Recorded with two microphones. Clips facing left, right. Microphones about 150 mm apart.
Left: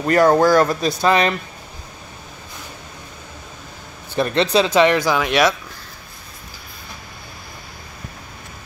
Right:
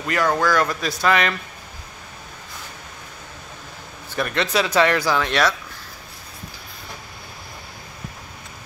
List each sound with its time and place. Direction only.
0.0 s speech: 40° left (ahead or behind)
4.2 s speech: 30° left (ahead or behind); by 5.5 s 15° left (ahead or behind)